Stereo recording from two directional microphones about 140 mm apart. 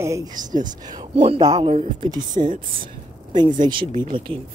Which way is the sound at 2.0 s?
30° right (ahead or behind).